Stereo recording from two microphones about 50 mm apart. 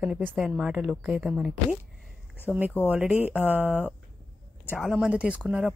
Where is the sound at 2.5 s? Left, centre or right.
Right.